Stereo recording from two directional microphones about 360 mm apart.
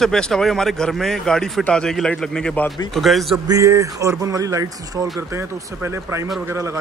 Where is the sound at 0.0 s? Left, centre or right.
Centre.